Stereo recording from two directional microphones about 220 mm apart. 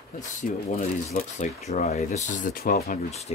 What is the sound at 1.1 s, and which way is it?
Speech, 35° left (ahead or behind).